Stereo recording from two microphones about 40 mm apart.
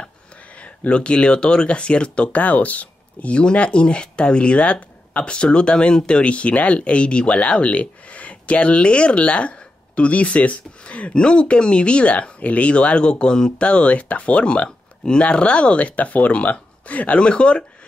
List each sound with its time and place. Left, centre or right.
0.6 s speech: left
2.3 s speech: left
17.2 s speech: left